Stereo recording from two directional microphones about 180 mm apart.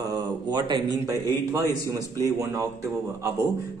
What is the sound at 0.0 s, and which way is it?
Speech, 20° right (ahead or behind).